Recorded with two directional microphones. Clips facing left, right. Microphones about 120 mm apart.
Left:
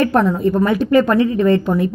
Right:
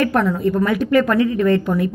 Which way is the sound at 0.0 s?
25° left (ahead or behind).